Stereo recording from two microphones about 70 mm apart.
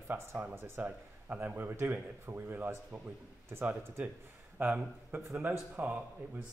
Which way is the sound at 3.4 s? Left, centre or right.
Right.